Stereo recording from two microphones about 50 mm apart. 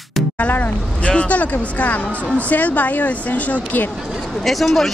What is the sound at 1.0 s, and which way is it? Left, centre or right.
A woman's voice, left.